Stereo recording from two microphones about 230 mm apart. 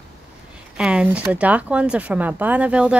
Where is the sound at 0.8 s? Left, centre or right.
Centre.